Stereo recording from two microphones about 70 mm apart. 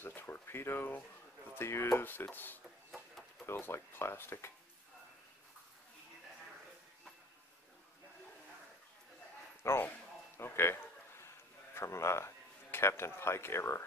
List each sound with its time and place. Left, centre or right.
0.0 s boiling: left
1.5 s speech: left
9.6 s a sound: left